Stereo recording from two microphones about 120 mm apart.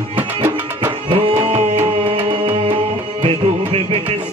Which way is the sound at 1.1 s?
50° right (ahead or behind).